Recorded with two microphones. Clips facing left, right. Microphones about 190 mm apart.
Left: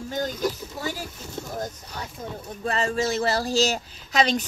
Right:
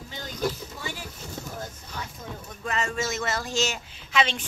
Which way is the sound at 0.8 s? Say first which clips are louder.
Left 6 dB; 40° left (ahead or behind).